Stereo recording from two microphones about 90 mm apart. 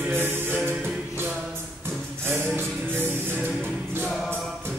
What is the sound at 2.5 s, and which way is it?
Music, 25° right (ahead or behind).